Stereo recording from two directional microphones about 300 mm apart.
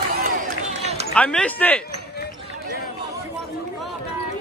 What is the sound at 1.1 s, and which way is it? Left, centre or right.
Speech, centre.